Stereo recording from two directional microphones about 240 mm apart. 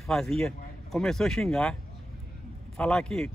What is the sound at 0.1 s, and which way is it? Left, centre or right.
Speech, centre.